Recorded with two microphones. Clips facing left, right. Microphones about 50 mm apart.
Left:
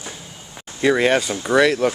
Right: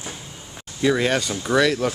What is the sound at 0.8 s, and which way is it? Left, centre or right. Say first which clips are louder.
Speech: left 3 dB; left.